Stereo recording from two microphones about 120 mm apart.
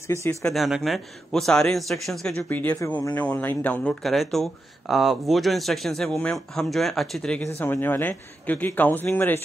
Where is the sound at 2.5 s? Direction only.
15° left (ahead or behind).